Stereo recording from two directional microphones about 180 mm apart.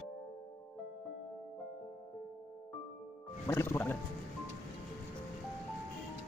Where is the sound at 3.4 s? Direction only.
15° left (ahead or behind).